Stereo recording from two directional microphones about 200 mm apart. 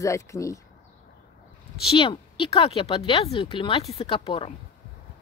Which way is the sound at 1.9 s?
25° left (ahead or behind).